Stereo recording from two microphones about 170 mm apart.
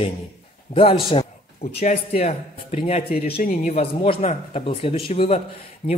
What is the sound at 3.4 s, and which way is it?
Speech, 45° left (ahead or behind).